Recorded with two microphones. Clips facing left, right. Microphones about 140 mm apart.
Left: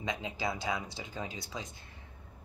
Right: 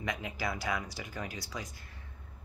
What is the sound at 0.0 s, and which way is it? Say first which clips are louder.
Speech: left 1 dB; 20° left (ahead or behind).